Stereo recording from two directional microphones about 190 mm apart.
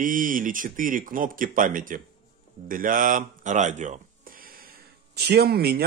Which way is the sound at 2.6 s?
45° right (ahead or behind).